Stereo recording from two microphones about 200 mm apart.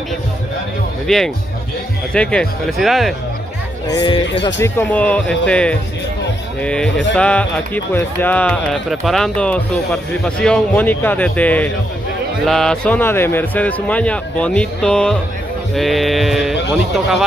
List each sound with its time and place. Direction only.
1.0 s speech: centre (ahead or behind)
3.8 s speech: 20° left (ahead or behind); by 16.5 s centre (ahead or behind)